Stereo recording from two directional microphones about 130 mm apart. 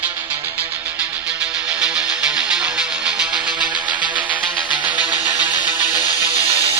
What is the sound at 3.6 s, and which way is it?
Music, 35° right (ahead or behind).